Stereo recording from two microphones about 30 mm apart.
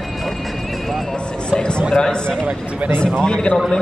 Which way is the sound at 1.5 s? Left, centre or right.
Left.